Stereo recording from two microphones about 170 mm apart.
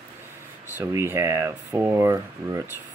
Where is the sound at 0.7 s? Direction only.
15° right (ahead or behind).